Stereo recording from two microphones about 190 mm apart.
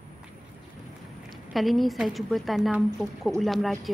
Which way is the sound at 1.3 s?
Centre (ahead or behind).